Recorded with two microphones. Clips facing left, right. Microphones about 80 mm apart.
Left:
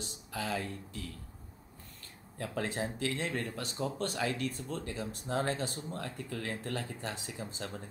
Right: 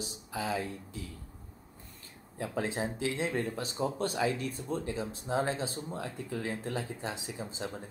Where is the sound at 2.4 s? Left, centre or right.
Centre.